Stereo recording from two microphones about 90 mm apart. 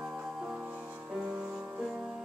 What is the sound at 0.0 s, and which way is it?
Music, 5° right (ahead or behind).